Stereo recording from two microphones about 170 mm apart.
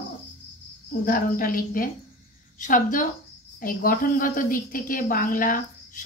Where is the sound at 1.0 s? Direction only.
55° left (ahead or behind).